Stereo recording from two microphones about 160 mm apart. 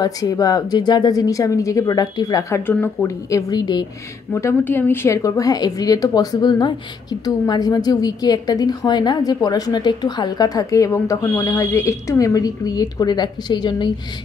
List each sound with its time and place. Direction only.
0.0 s a woman's voice: 25° left (ahead or behind)
4.3 s a woman's voice: 15° left (ahead or behind)